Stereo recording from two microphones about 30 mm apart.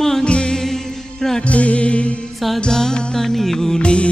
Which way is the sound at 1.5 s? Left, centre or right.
Left.